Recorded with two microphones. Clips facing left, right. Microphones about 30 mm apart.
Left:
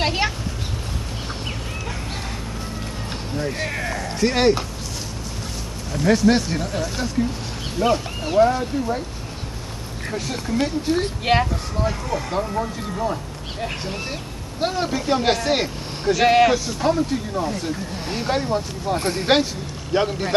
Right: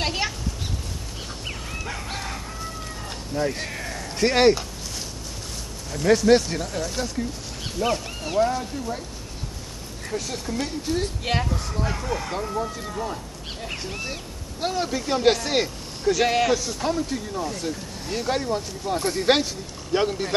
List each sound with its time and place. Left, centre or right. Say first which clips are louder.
0.0 s speech: left 4 dB; centre
1.9 s music: left 1 dB; centre
3.3 s speech: right 1 dB; centre
3.6 s a sound: left 6 dB; left
4.2 s speech: even; centre
6.0 s speech: even; centre
10.0 s speech: left 2 dB; left
11.9 s speech: left 3 dB; centre
17.9 s speech: left 2 dB; left
18.3 s speech: left 4 dB; centre
18.9 s speech: even; left
19.9 s speech: left 2 dB; centre